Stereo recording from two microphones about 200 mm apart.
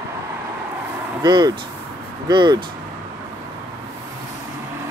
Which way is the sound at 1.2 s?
20° right (ahead or behind).